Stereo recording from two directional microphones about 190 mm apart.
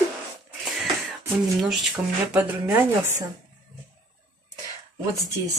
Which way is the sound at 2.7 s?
15° right (ahead or behind).